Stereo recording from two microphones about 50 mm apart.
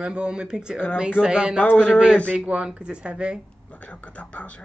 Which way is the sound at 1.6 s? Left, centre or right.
Left.